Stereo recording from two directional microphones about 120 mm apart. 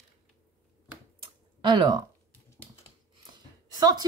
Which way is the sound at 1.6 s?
35° right (ahead or behind).